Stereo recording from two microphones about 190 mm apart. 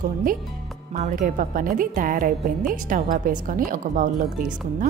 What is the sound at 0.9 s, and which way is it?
A woman's voice, 40° right (ahead or behind).